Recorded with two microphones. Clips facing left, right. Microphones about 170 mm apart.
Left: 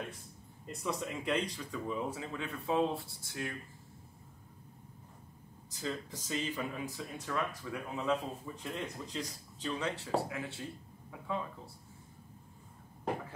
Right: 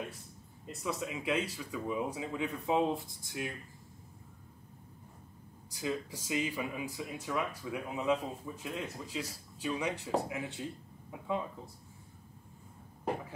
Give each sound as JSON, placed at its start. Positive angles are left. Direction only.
{"t": 0.7, "sound": "speech", "side_deg": 0}
{"t": 5.7, "sound": "speech", "side_deg": -10}